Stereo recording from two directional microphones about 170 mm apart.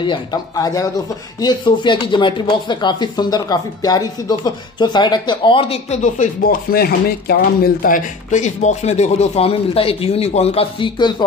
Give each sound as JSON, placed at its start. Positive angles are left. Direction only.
{"t": 0.0, "sound": "speech", "side_deg": 25}